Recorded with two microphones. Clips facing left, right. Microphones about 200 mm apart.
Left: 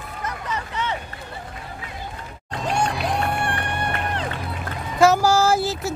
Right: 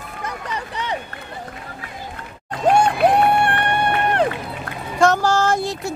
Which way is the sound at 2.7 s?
60° right (ahead or behind).